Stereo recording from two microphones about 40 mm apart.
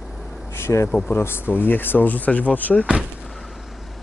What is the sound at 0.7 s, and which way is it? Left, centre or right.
Speech, left.